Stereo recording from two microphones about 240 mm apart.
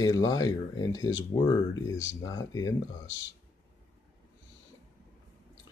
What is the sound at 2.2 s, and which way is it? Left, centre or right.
Speech, centre.